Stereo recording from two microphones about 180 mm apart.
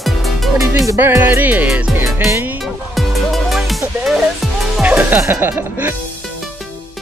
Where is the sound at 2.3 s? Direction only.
10° right (ahead or behind).